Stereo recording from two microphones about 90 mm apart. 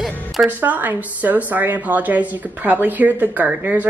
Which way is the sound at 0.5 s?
20° right (ahead or behind).